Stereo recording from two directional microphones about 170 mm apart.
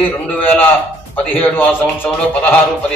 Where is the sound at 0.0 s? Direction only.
10° left (ahead or behind).